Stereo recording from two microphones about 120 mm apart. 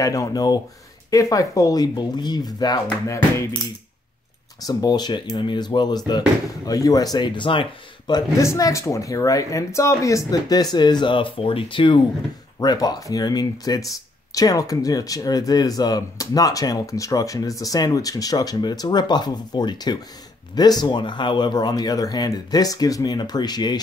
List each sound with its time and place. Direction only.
0.0 s speech: 30° left (ahead or behind)
4.6 s speech: 35° left (ahead or behind)
8.1 s speech: 30° left (ahead or behind); by 12.0 s 45° left (ahead or behind)
12.5 s speech: 35° left (ahead or behind)